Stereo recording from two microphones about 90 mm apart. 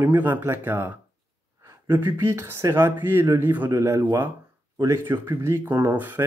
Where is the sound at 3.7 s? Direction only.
35° right (ahead or behind).